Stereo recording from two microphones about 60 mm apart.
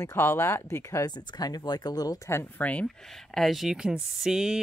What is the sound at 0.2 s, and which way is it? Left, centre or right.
Speech, left.